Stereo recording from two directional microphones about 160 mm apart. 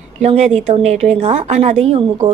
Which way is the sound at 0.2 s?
40° right (ahead or behind).